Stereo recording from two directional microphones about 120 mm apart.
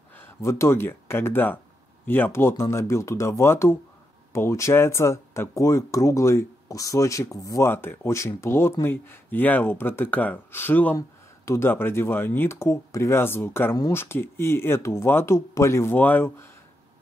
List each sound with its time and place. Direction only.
0.1 s speech: 20° left (ahead or behind)